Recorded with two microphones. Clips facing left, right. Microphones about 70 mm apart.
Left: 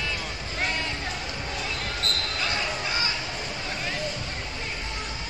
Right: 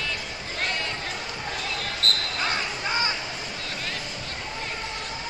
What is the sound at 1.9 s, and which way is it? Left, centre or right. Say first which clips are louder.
Basketball bounce: right 2 dB; right.